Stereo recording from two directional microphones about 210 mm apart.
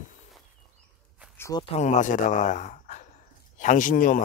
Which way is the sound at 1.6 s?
30° left (ahead or behind).